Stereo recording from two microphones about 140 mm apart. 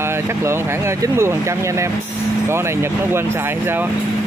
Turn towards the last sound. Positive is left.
turn(degrees=-20)  # may be behind; listen again after turning